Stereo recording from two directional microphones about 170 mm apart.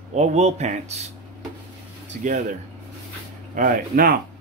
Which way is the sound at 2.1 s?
55° right (ahead or behind).